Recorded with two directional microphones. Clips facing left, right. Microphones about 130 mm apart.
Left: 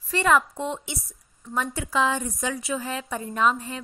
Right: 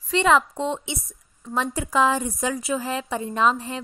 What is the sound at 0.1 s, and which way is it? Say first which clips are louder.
A woman's voice: right 2 dB; 25° right (ahead or behind).